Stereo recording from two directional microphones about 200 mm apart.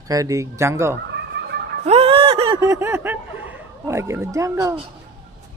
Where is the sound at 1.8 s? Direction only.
30° right (ahead or behind); by 3.1 s 10° right (ahead or behind).